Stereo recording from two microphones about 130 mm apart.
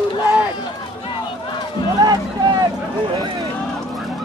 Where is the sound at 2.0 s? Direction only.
30° right (ahead or behind).